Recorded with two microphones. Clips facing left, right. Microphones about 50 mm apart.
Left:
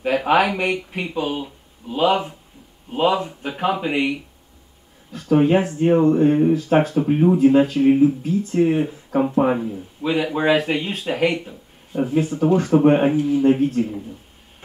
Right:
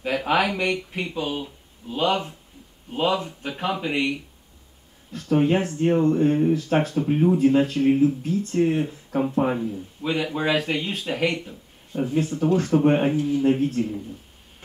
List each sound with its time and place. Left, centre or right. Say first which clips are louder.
0.0 s speech: left 5 dB; left
0.4 s speech: left 3 dB; centre